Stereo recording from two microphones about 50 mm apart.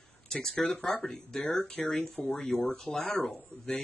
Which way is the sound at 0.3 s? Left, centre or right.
Centre.